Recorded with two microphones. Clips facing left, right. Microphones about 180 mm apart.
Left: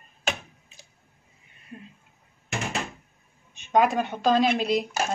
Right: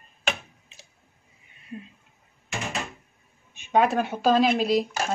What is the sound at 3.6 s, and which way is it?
Speech, 5° right (ahead or behind).